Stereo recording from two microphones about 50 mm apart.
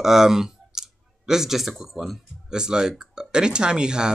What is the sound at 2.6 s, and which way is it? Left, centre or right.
Speech, centre.